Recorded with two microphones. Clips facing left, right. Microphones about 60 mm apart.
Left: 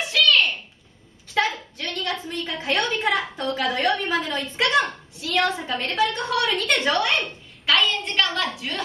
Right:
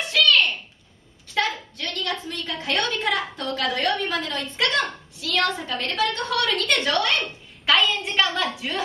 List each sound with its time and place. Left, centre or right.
0.0 s a sound: centre
1.3 s a woman's voice: centre
4.6 s a woman's voice: centre
6.5 s a woman's voice: centre
7.0 s a woman's voice: centre
7.6 s a woman's voice: centre